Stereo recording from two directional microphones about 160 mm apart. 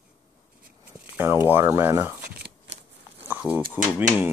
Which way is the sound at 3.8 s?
10° right (ahead or behind).